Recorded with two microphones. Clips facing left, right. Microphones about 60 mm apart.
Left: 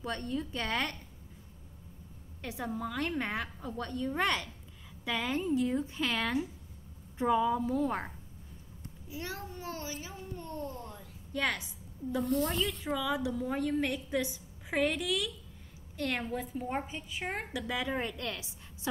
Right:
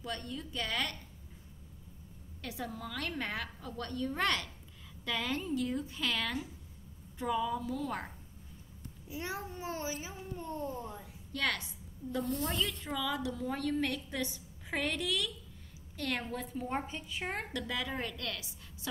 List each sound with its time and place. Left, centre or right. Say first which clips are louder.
0.0 s a woman's voice: left 5 dB; left
2.4 s a woman's voice: left 4 dB; left
9.1 s a child's voice: right 1 dB; centre
11.3 s a woman's voice: left 2 dB; centre
12.4 s speech: left 2 dB; centre
12.9 s a woman's voice: left 4 dB; centre
14.7 s a woman's voice: left 4 dB; centre; by 18.5 s left